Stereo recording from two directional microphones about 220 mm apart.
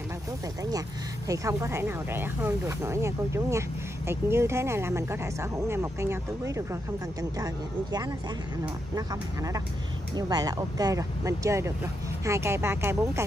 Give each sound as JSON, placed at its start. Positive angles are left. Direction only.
{"t": 0.7, "sound": "speech", "side_deg": -15}